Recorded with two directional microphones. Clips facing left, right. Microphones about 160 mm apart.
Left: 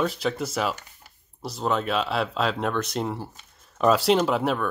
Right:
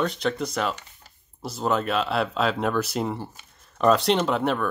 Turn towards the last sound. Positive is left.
turn(degrees=0)  # may be behind; listen again after turning